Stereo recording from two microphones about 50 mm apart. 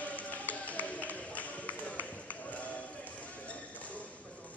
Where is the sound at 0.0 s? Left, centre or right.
Left.